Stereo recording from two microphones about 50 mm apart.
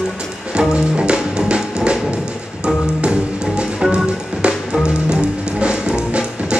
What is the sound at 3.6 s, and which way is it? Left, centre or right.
Music, centre.